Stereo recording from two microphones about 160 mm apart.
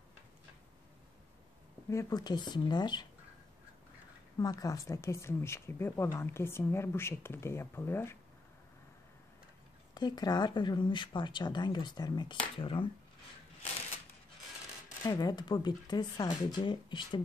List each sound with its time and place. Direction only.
1.9 s speech: 20° left (ahead or behind)
4.4 s speech: 20° left (ahead or behind)
9.9 s speech: 25° left (ahead or behind)
15.0 s speech: 25° left (ahead or behind)